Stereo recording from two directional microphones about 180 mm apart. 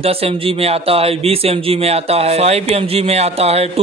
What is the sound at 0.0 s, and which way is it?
Speech, 35° right (ahead or behind).